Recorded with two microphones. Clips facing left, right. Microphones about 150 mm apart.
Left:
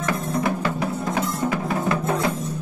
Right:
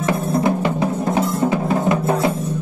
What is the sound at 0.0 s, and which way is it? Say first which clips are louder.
Music: right 5 dB; 25° right (ahead or behind).